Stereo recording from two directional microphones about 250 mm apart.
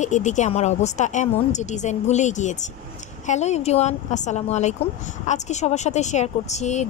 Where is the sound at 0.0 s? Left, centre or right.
Left.